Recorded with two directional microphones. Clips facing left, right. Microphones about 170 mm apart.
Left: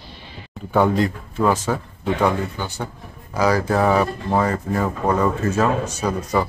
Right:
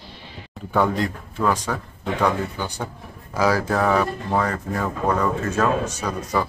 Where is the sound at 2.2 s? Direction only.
20° left (ahead or behind).